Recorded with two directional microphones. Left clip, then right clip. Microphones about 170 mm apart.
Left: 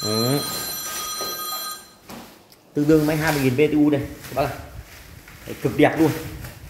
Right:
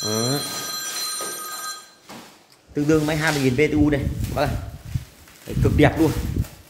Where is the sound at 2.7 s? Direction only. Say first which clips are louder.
Left 2 dB; 10° right (ahead or behind).